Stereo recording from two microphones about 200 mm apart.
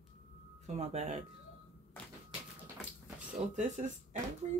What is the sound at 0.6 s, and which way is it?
Speech, 35° right (ahead or behind).